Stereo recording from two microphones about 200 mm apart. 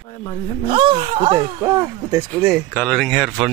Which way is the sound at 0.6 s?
25° right (ahead or behind).